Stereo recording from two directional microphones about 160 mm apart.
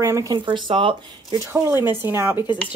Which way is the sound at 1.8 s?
15° right (ahead or behind).